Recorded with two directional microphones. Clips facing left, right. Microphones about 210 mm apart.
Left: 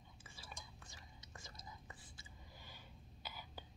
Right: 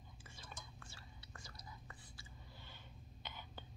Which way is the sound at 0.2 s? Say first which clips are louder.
Even; 5° left (ahead or behind).